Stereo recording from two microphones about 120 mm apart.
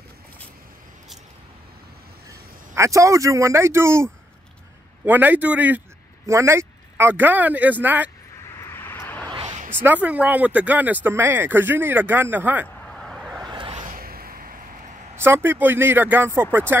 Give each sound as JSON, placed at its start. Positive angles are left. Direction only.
{"t": 2.7, "sound": "speech", "side_deg": -25}
{"t": 6.2, "sound": "speech", "side_deg": -25}
{"t": 8.5, "sound": "vehicle", "side_deg": 20}
{"t": 9.7, "sound": "speech", "side_deg": -15}
{"t": 13.0, "sound": "vehicle", "side_deg": 0}
{"t": 13.4, "sound": "a sound", "side_deg": -40}
{"t": 15.1, "sound": "speech", "side_deg": -20}